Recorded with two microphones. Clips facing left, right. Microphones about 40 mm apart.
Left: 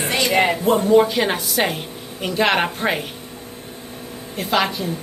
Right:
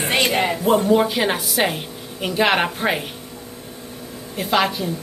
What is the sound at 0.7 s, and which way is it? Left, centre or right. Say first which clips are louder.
A woman's voice: even; centre.